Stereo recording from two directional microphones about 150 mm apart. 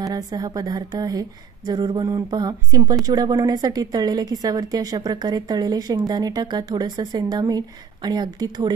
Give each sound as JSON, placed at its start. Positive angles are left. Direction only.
{"t": 0.0, "sound": "speech", "side_deg": -25}